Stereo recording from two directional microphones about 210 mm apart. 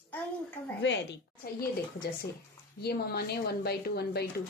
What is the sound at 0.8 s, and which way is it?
Speech, 55° left (ahead or behind).